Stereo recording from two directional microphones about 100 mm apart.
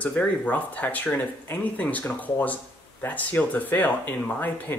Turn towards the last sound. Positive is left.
turn(degrees=15)  # may be behind; listen again after turning